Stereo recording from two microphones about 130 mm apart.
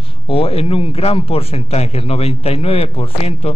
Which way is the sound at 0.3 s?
50° left (ahead or behind).